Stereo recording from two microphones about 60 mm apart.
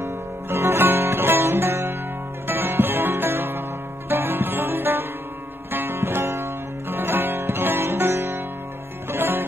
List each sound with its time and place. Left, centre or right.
0.0 s music: right